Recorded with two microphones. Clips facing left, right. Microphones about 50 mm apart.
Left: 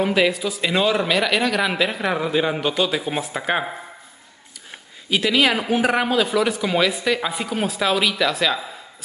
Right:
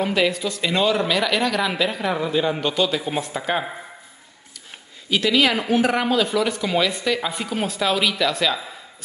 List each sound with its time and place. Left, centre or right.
0.0 s speech: centre
5.1 s speech: centre